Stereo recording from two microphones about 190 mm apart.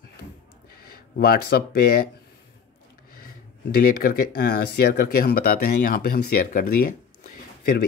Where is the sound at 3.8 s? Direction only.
50° left (ahead or behind).